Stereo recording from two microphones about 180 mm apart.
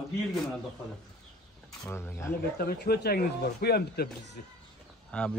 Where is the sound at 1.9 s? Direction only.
15° left (ahead or behind).